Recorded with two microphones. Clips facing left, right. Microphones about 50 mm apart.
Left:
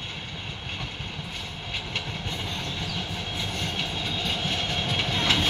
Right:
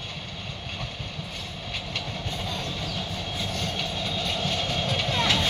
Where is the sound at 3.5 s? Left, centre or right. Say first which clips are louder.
Even; centre.